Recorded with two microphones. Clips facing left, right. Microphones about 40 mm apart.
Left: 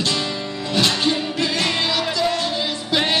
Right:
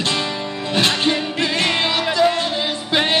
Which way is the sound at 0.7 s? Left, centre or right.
Right.